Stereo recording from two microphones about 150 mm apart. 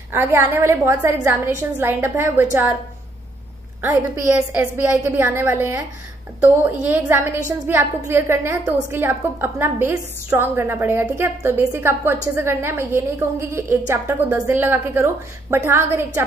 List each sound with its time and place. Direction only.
0.1 s a woman's voice: 15° right (ahead or behind)
3.8 s a woman's voice: 15° right (ahead or behind)